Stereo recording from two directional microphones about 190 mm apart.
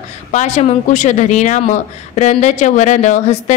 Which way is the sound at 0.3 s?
40° left (ahead or behind).